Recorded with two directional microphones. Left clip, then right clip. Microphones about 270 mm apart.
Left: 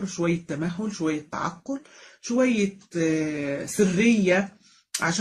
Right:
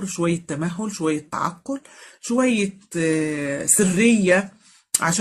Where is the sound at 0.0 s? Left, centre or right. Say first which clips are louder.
Right 3 dB; right.